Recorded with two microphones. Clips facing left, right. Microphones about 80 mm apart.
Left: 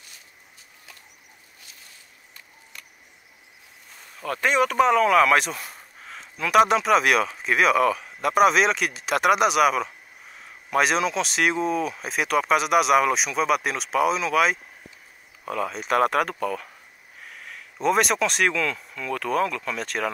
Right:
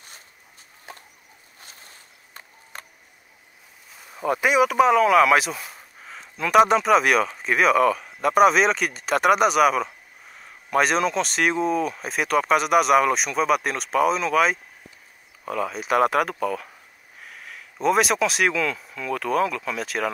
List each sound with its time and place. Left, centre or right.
0.9 s bird: right
1.6 s a sound: right
4.2 s speech: centre